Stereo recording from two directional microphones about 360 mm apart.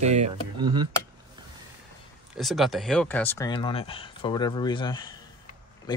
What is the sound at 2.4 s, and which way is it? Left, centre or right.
Speech, centre.